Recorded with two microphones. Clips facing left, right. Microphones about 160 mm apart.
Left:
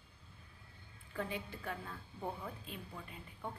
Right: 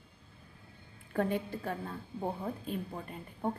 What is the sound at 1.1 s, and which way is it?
Speech, 50° right (ahead or behind).